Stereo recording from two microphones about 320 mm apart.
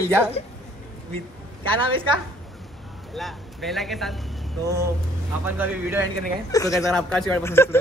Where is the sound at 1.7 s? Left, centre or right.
Centre.